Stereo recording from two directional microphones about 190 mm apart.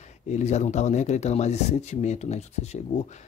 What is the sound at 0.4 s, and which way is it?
Speech, 35° left (ahead or behind).